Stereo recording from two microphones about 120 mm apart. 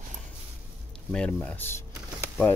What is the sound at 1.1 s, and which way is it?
Speech, 10° left (ahead or behind).